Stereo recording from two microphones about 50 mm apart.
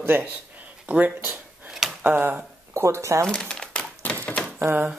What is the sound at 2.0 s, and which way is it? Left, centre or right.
Chopping, right.